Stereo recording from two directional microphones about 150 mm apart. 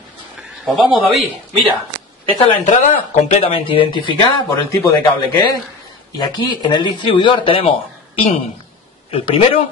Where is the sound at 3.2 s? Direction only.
45° left (ahead or behind).